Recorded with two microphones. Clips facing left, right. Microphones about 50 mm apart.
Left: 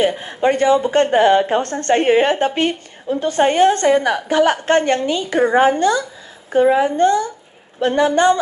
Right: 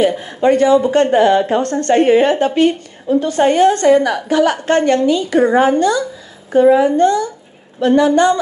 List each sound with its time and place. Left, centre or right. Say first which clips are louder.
0.0 s a woman's voice: right 3 dB; left